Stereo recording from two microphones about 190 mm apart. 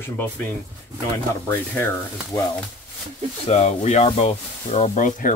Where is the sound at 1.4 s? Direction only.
10° left (ahead or behind).